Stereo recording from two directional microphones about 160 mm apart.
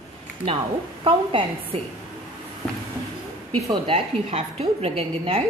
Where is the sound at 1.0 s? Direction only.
35° right (ahead or behind).